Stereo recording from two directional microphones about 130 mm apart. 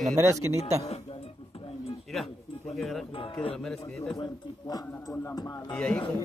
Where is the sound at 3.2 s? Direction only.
40° left (ahead or behind).